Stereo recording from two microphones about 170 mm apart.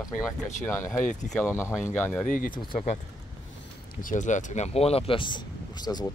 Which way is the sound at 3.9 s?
50° left (ahead or behind).